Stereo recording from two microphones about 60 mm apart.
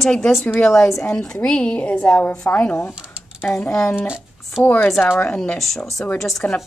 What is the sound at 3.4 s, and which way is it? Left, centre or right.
Speech, left.